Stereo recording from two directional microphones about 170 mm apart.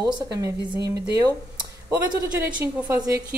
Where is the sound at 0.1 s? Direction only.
20° right (ahead or behind).